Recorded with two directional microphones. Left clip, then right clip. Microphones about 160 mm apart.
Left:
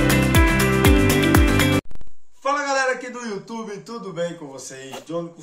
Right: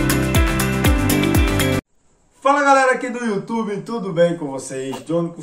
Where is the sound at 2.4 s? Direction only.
5° left (ahead or behind).